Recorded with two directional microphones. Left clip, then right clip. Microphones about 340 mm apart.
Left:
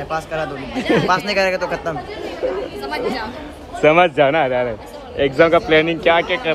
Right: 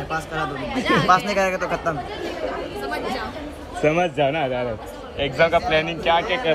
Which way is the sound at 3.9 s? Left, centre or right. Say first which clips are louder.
Left 9 dB; left.